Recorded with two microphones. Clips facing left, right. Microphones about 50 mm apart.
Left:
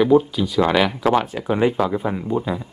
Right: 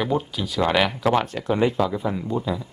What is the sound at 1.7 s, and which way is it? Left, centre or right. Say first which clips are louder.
Speech: left 2 dB; left.